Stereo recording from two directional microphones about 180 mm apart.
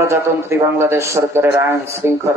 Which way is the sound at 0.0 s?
15° right (ahead or behind).